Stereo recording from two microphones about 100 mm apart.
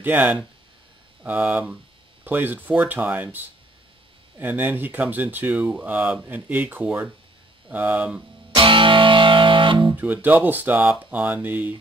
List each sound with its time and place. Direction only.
0.0 s speech: 20° right (ahead or behind)
8.5 s music: 55° right (ahead or behind)
9.9 s speech: 15° right (ahead or behind)